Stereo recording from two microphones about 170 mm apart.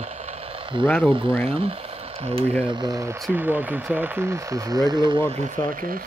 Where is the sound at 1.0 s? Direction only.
5° right (ahead or behind).